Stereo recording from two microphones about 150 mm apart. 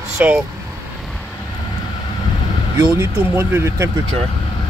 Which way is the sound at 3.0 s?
15° right (ahead or behind).